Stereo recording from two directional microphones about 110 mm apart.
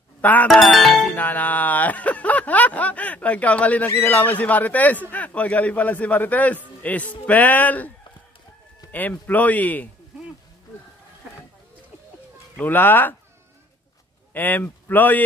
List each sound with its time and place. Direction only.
0.2 s music: 15° left (ahead or behind)
0.5 s speech: 5° left (ahead or behind)
1.1 s speech: 15° left (ahead or behind)
8.9 s speech: 15° left (ahead or behind)
12.5 s speech: 15° left (ahead or behind)
14.3 s speech: 15° left (ahead or behind)